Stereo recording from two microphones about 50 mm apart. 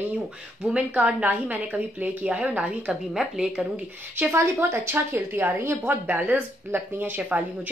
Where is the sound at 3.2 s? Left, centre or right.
Centre.